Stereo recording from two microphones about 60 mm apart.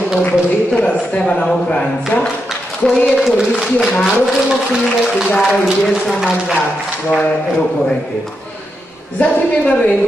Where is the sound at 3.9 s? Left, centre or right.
Centre.